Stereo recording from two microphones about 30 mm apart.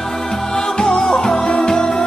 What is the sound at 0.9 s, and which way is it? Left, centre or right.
Music, left.